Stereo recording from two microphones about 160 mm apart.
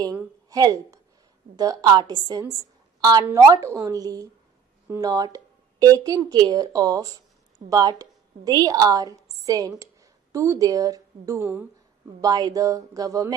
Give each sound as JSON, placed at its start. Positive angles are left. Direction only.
{"t": 0.5, "sound": "a woman's voice", "side_deg": -20}